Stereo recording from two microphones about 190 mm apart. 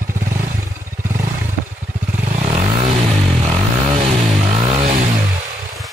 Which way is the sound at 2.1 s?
40° right (ahead or behind).